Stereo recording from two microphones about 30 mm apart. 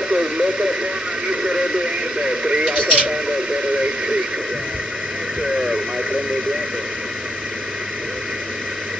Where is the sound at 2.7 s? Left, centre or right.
Right.